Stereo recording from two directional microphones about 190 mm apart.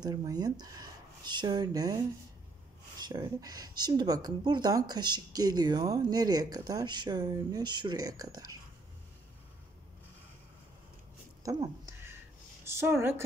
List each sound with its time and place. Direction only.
0.0 s speech: 20° right (ahead or behind)
3.0 s speech: 20° right (ahead or behind)
11.4 s a sound: 15° right (ahead or behind)
12.6 s a woman's voice: 15° right (ahead or behind)